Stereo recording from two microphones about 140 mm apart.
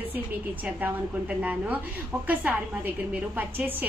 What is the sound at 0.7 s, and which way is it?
A woman's voice, 10° right (ahead or behind).